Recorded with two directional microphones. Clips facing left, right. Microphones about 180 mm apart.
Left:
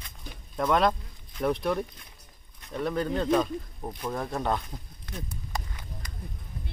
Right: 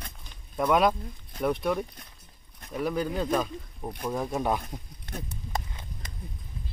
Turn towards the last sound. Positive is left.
turn(degrees=-25)  # may be behind; listen again after turning